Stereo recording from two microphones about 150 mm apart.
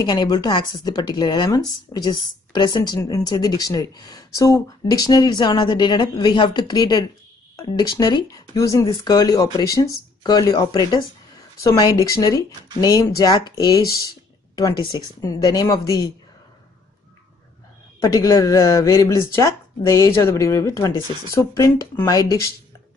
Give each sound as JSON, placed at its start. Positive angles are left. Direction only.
{"t": 0.0, "sound": "speech", "side_deg": 30}
{"t": 18.0, "sound": "speech", "side_deg": 25}